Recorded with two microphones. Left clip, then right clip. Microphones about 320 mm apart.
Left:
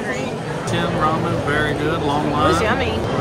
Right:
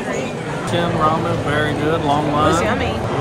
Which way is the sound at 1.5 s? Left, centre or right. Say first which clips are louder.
Right 2 dB; centre.